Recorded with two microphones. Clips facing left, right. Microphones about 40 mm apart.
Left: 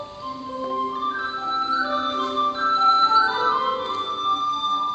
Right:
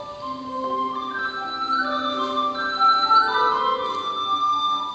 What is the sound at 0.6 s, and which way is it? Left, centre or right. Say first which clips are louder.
Music: right 1 dB; centre.